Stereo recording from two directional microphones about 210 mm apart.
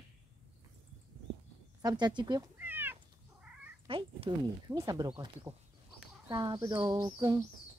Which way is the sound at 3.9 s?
25° right (ahead or behind).